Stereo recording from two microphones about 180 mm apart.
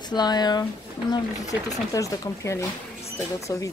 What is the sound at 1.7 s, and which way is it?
Speech, 20° left (ahead or behind).